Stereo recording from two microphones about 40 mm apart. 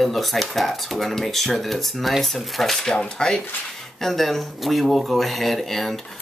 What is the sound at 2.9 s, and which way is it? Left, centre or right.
Speech, centre.